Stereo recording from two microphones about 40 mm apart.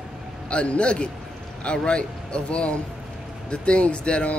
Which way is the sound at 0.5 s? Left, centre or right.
Left.